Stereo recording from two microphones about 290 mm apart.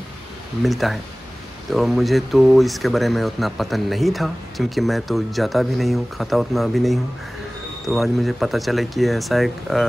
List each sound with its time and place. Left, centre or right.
0.6 s speech: centre